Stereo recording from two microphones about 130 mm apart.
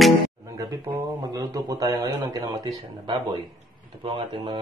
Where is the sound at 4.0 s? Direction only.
40° right (ahead or behind).